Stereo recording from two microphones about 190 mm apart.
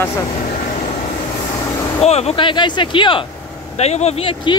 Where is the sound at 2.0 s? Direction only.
35° left (ahead or behind).